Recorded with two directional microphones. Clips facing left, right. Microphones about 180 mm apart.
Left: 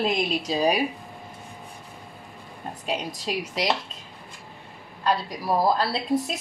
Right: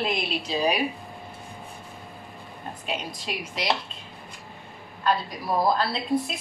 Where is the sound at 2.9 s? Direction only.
40° left (ahead or behind).